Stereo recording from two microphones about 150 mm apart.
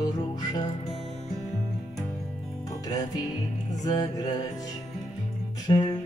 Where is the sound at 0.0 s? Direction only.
25° left (ahead or behind).